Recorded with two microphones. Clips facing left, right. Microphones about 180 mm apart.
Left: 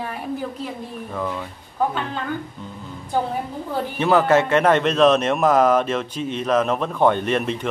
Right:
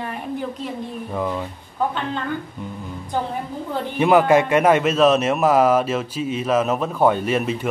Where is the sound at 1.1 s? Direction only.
15° right (ahead or behind).